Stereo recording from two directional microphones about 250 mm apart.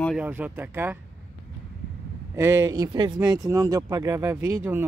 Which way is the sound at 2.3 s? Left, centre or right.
Centre.